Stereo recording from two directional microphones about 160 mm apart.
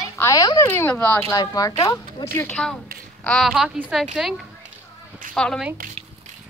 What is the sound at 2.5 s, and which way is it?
Speech, 5° left (ahead or behind).